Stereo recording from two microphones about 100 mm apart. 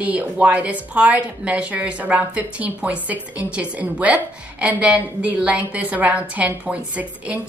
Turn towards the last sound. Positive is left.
turn(degrees=-15)  # may be behind; listen again after turning